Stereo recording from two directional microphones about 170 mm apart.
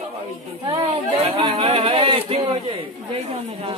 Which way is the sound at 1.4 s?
30° right (ahead or behind).